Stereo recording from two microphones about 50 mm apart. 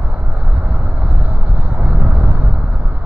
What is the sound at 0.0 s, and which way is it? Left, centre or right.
Vehicle, right.